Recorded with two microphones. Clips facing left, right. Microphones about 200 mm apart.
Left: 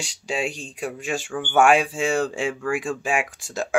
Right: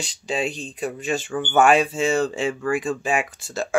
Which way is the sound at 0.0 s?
10° left (ahead or behind).